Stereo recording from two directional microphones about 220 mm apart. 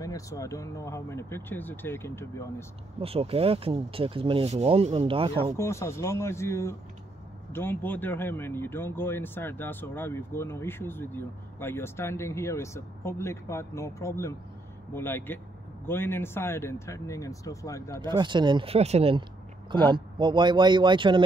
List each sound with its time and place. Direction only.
0.0 s speech: 15° left (ahead or behind)
3.0 s speech: 25° right (ahead or behind)
5.6 s speech: 15° left (ahead or behind)
18.0 s speech: 20° right (ahead or behind)